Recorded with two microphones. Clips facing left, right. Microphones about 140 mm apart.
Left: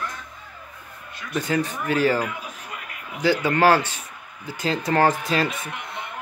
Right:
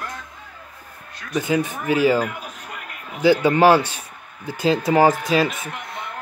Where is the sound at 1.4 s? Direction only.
5° right (ahead or behind).